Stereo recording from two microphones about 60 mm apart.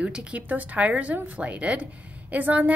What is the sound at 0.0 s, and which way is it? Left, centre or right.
A woman's voice, right.